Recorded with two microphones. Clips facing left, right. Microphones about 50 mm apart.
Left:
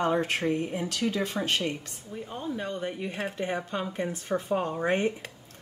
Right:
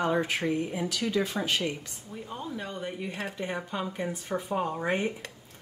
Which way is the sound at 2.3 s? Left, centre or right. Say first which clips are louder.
Left 3 dB; centre.